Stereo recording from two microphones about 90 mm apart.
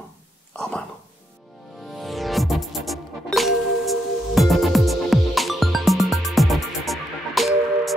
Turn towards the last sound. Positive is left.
turn(degrees=0)  # may be behind; listen again after turning